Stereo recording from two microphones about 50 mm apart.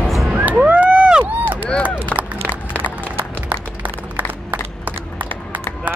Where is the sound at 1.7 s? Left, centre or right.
Left.